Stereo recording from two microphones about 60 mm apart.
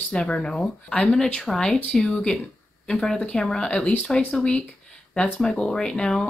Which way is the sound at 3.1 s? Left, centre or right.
Centre.